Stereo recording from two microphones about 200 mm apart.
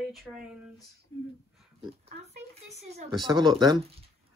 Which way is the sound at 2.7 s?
35° right (ahead or behind).